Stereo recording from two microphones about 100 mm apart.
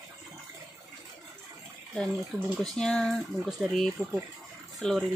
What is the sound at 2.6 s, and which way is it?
Speech, 5° left (ahead or behind).